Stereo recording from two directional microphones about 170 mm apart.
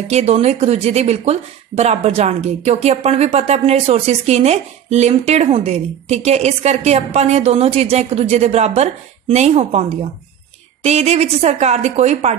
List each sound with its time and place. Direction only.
0.1 s speech: 40° right (ahead or behind)